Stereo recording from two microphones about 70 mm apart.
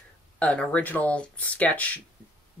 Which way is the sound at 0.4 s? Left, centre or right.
Centre.